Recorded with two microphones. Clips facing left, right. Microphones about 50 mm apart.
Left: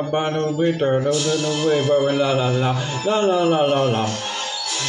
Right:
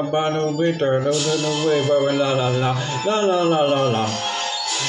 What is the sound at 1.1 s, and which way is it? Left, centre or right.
Speech, right.